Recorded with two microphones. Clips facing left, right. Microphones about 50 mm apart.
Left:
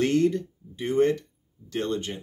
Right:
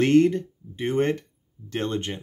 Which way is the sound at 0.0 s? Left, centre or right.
Right.